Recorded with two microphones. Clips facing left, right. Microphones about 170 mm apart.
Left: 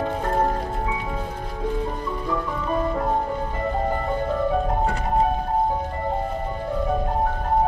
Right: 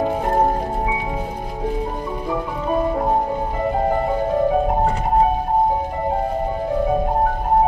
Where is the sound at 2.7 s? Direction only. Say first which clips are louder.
Right 4 dB; 20° right (ahead or behind).